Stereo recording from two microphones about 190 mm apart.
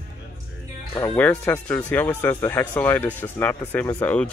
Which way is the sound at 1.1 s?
10° left (ahead or behind).